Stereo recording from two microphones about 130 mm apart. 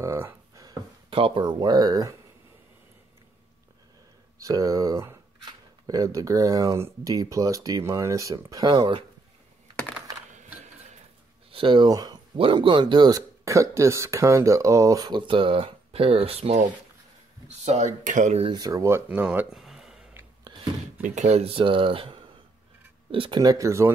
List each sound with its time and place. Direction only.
0.0 s a sound: 20° right (ahead or behind)
1.1 s speech: 45° right (ahead or behind)
4.4 s speech: 25° right (ahead or behind)
11.5 s speech: 40° right (ahead or behind)
12.4 s speech: 40° right (ahead or behind); by 18.4 s 75° right (ahead or behind)
18.4 s speech: 30° right (ahead or behind); by 20.0 s centre (ahead or behind)
20.5 s a sound: 35° right (ahead or behind)
21.0 s speech: 65° right (ahead or behind); by 23.9 s 25° right (ahead or behind)